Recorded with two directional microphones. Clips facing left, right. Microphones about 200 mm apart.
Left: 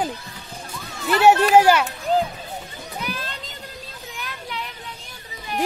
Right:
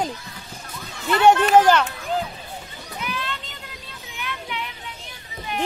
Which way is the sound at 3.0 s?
40° left (ahead or behind).